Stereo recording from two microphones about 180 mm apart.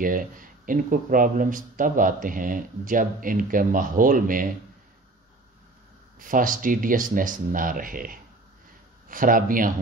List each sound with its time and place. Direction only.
0.0 s speech: 50° right (ahead or behind)
6.1 s speech: 50° right (ahead or behind)